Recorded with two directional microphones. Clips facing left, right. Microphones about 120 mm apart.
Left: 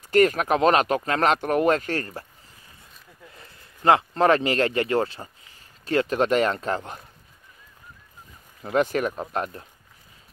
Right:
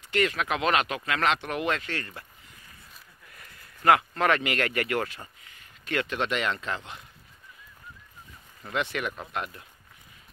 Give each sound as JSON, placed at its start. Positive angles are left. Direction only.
{"t": 0.1, "sound": "speech", "side_deg": 45}
{"t": 3.3, "sound": "speech", "side_deg": 25}
{"t": 8.6, "sound": "speech", "side_deg": 40}